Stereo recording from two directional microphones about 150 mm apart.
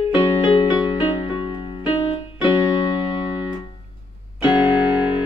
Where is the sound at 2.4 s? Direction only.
30° left (ahead or behind).